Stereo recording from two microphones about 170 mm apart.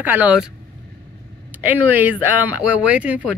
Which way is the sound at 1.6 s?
10° right (ahead or behind).